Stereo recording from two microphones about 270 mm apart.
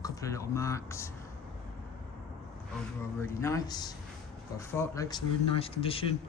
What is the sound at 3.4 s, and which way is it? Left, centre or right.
Speech, centre.